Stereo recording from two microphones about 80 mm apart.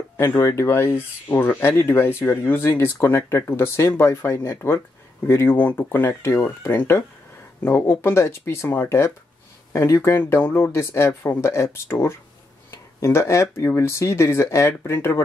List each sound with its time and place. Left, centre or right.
0.2 s speech: left